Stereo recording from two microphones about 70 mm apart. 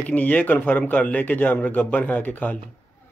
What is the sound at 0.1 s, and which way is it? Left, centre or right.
Speech, left.